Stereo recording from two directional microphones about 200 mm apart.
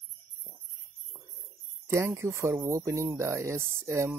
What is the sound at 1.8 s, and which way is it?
Speech, 15° right (ahead or behind).